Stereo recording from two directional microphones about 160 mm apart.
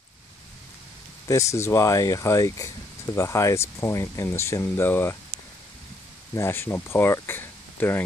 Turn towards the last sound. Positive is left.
turn(degrees=15)  # may be behind; listen again after turning